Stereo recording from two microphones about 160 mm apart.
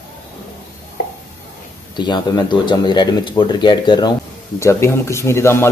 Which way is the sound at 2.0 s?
25° left (ahead or behind).